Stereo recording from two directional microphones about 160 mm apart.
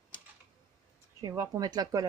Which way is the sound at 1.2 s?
20° right (ahead or behind).